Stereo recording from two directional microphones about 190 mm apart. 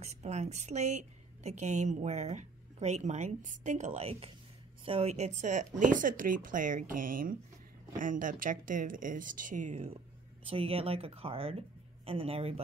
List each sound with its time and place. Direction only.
0.0 s a woman's voice: 35° right (ahead or behind)
10.4 s a woman's voice: 30° right (ahead or behind)